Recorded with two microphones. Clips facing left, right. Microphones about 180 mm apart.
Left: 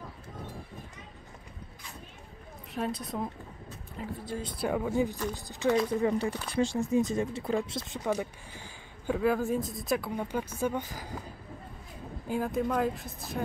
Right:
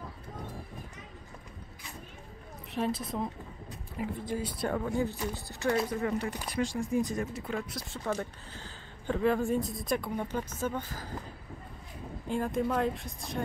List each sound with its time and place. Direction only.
2.7 s speech: centre (ahead or behind)
4.0 s speech: 15° right (ahead or behind)
4.6 s speech: 5° left (ahead or behind)
6.0 s speech: 25° left (ahead or behind)
7.9 s speech: 15° left (ahead or behind)
12.3 s speech: centre (ahead or behind)